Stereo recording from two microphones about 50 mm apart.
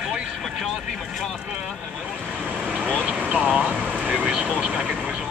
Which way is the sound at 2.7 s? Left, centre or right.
Right.